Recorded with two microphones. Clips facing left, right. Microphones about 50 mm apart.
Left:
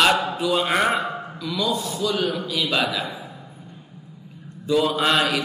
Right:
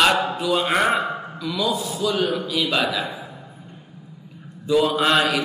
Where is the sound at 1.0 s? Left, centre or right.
Right.